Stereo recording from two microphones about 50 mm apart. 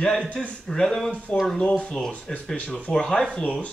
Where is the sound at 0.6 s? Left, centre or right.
Centre.